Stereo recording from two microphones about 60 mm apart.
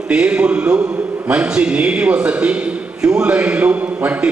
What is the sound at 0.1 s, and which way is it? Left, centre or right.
A man's voice, centre.